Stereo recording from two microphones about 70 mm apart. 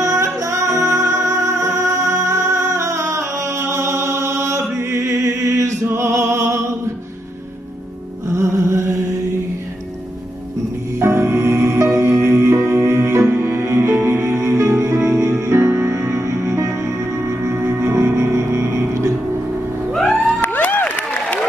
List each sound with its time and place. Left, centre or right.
0.0 s music: right
8.3 s music: right
11.0 s music: right
19.9 s music: centre
20.4 s applause: left